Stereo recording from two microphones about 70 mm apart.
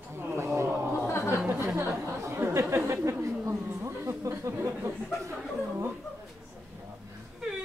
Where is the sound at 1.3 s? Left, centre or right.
Right.